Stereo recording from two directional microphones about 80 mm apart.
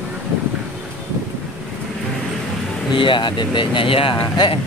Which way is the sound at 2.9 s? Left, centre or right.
Left.